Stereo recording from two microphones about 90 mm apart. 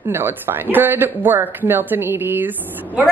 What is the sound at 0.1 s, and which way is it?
A woman's voice, 25° right (ahead or behind).